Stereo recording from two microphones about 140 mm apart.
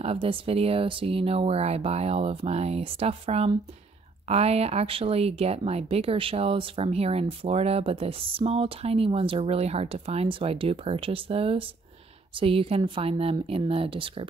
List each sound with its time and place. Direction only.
0.0 s a woman's voice: 40° right (ahead or behind)